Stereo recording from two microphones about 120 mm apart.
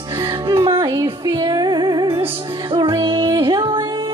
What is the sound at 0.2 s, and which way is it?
Music, 30° right (ahead or behind).